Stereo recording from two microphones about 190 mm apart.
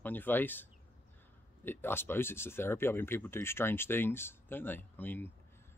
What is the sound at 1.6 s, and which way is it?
Speech, 10° left (ahead or behind).